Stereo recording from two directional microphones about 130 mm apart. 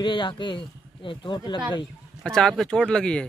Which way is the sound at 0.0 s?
40° left (ahead or behind).